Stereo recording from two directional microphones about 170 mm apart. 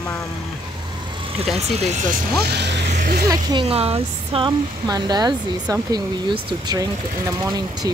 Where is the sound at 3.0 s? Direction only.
60° right (ahead or behind).